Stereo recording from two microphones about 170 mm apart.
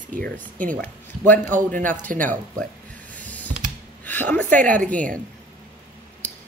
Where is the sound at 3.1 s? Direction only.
10° left (ahead or behind).